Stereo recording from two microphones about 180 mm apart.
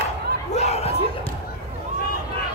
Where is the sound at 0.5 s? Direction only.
35° left (ahead or behind).